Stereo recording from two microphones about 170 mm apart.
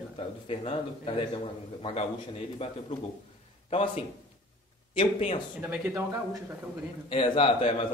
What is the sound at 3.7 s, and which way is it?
Speech, 35° left (ahead or behind).